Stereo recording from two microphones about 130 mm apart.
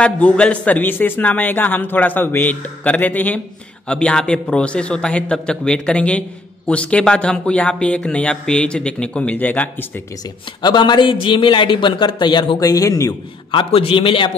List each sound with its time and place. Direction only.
0.0 s a man's voice: 10° left (ahead or behind)
10.6 s a man's voice: 35° left (ahead or behind)
13.5 s a man's voice: 45° left (ahead or behind)